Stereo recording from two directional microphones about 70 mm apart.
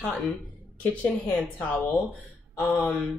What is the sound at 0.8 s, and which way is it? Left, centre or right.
Speech, centre.